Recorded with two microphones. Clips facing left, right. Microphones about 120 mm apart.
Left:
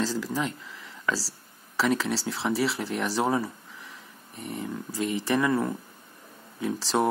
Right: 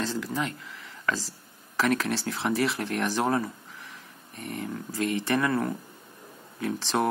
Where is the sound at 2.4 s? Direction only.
Centre (ahead or behind).